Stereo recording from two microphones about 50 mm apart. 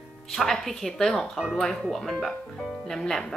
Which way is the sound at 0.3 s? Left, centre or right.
Centre.